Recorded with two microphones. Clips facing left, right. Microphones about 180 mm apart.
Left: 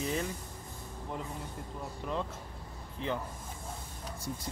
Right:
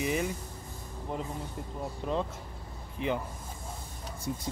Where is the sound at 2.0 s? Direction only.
25° right (ahead or behind).